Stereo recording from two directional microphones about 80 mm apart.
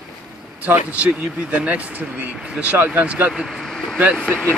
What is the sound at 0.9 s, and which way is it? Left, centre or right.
Speech, centre.